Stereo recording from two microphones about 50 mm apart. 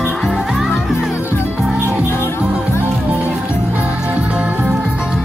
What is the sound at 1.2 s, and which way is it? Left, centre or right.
Music, left.